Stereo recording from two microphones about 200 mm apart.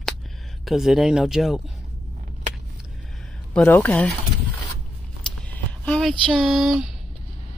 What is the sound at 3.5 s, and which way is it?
Speech, 5° left (ahead or behind).